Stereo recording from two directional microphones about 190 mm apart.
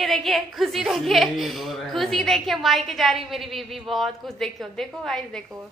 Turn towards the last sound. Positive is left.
turn(degrees=0)  # may be behind; listen again after turning